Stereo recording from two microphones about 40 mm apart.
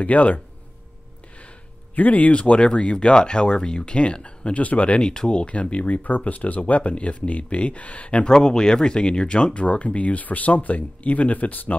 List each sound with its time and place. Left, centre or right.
0.0 s speech: left
2.0 s speech: left
6.0 s speech: left
8.3 s speech: centre; by 11.7 s left